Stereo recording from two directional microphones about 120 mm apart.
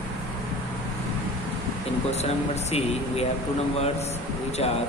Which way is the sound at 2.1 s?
65° left (ahead or behind).